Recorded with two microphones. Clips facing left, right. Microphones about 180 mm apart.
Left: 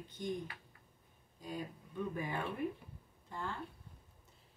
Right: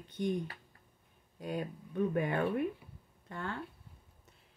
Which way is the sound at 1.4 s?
65° right (ahead or behind).